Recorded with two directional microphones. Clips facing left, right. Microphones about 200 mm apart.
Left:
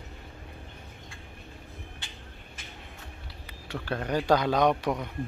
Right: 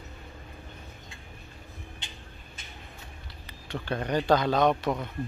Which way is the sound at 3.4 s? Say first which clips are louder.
Right 1 dB; 5° left (ahead or behind).